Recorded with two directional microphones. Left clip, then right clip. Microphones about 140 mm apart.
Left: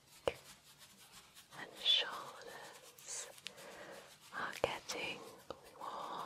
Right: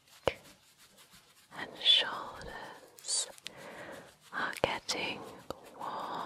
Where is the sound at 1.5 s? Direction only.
50° right (ahead or behind).